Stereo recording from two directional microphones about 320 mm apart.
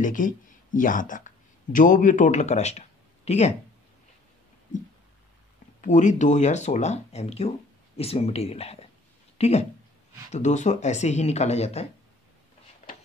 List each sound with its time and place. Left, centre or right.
0.0 s speech: left
5.8 s speech: left